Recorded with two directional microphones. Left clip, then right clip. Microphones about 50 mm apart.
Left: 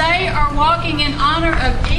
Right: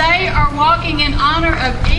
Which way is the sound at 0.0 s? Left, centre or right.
Right.